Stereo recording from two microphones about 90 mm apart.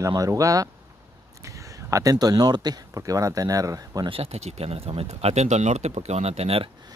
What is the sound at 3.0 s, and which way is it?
Speech, 40° right (ahead or behind).